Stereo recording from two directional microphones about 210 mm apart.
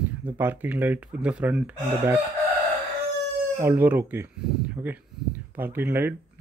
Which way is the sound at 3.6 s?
10° right (ahead or behind).